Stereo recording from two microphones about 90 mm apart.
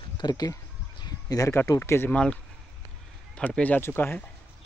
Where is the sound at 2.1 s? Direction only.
10° left (ahead or behind).